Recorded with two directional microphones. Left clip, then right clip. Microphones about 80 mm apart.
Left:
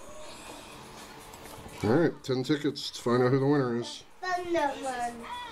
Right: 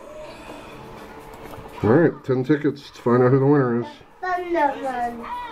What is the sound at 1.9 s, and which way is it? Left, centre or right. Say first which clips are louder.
Speech: right 9 dB; centre.